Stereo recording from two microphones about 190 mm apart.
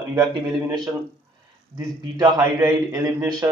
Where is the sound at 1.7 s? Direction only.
20° right (ahead or behind).